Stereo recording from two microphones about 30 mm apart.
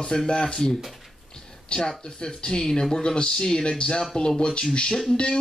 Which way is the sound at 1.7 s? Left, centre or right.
Left.